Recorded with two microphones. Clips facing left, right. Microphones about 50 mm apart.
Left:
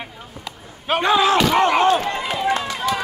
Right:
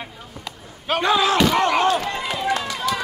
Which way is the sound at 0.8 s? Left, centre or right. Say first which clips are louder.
Left 2 dB; left.